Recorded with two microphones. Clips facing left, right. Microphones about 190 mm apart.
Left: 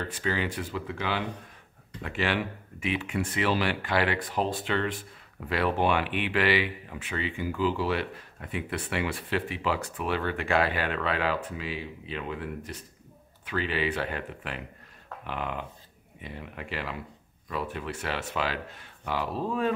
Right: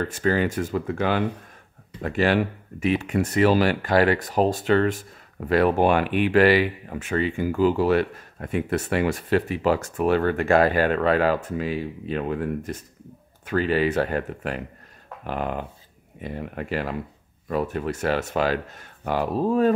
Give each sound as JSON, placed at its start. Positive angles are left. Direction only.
{"t": 0.0, "sound": "speech", "side_deg": -45}